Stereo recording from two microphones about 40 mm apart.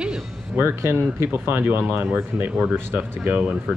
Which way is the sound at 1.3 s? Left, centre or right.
Right.